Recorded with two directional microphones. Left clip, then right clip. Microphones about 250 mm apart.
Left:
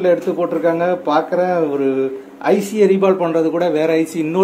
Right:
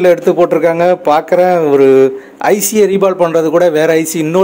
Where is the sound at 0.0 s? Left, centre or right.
Right.